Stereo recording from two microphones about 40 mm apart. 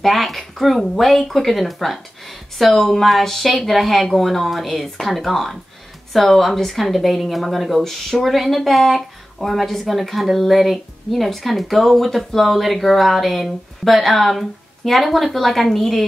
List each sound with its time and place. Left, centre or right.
0.0 s speech: centre